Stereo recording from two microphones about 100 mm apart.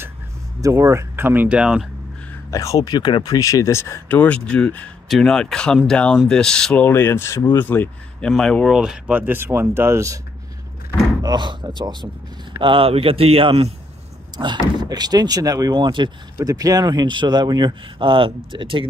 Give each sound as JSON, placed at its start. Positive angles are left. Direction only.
{"t": 0.6, "sound": "speech", "side_deg": -30}
{"t": 2.5, "sound": "speech", "side_deg": 35}
{"t": 3.3, "sound": "speech", "side_deg": 35}
{"t": 4.1, "sound": "speech", "side_deg": 15}
{"t": 6.8, "sound": "speech", "side_deg": 25}
{"t": 8.2, "sound": "speech", "side_deg": 5}
{"t": 8.7, "sound": "speech", "side_deg": -5}
{"t": 11.2, "sound": "speech", "side_deg": -45}
{"t": 12.5, "sound": "speech", "side_deg": -60}
{"t": 14.3, "sound": "speech", "side_deg": -50}
{"t": 15.7, "sound": "speech", "side_deg": -50}
{"t": 16.3, "sound": "speech", "side_deg": -35}